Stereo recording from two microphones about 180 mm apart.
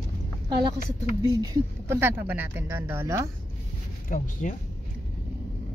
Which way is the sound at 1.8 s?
10° right (ahead or behind).